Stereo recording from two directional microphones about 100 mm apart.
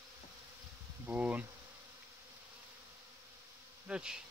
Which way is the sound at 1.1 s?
15° right (ahead or behind).